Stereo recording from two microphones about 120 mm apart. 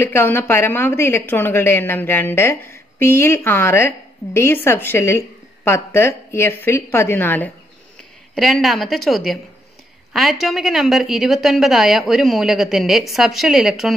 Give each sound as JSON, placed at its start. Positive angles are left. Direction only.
{"t": 0.0, "sound": "a woman's voice", "side_deg": 15}
{"t": 8.4, "sound": "a woman's voice", "side_deg": 0}
{"t": 10.4, "sound": "a woman's voice", "side_deg": 0}